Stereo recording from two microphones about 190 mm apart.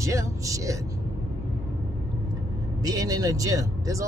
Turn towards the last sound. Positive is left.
turn(degrees=-15)  # may be behind; listen again after turning